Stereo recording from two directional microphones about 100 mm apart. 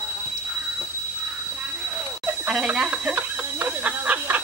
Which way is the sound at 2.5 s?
10° right (ahead or behind).